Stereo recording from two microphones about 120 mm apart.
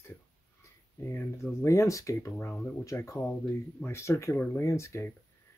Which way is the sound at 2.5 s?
10° left (ahead or behind).